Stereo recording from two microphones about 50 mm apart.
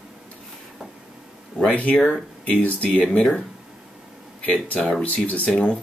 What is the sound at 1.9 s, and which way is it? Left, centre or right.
Speech, centre.